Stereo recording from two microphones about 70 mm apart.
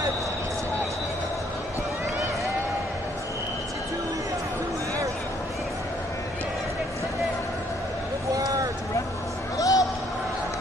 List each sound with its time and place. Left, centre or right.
9.6 s basketball bounce: left